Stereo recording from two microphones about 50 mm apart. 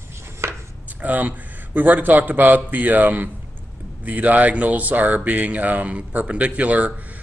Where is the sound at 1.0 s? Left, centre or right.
Right.